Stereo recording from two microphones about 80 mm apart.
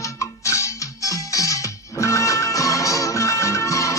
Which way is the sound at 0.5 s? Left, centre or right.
Left.